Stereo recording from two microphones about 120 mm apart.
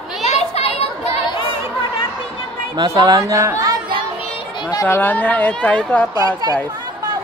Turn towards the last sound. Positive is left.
turn(degrees=-30)  # may be behind; listen again after turning